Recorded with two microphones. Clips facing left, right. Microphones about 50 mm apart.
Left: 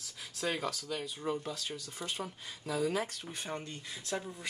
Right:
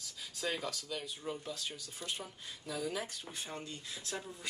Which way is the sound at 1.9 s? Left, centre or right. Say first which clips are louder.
Left 4 dB; left.